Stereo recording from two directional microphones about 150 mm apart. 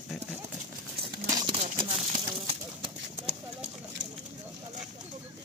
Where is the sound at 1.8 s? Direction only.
35° right (ahead or behind).